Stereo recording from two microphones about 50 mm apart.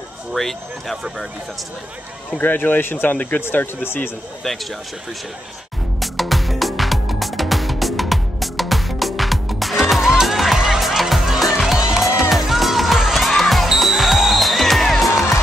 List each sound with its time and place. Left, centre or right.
0.3 s speech: centre
2.3 s speech: left
5.9 s music: centre